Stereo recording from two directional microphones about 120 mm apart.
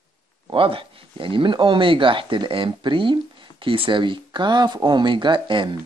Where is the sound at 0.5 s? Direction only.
45° right (ahead or behind).